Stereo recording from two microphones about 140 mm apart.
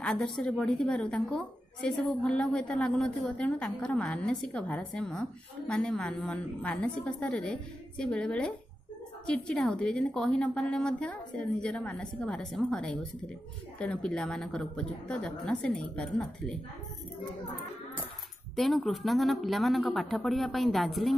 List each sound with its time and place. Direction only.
0.0 s a woman's voice: 5° left (ahead or behind)
18.6 s a woman's voice: centre (ahead or behind)